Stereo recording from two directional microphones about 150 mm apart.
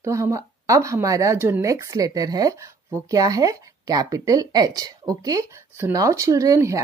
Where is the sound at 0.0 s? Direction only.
20° right (ahead or behind).